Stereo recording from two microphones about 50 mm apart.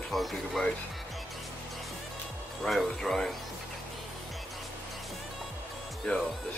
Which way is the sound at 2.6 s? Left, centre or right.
Centre.